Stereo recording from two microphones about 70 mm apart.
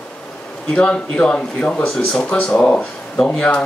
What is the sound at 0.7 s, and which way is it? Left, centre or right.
Speech, centre.